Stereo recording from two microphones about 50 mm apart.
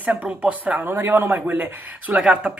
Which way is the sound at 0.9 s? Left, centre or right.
Right.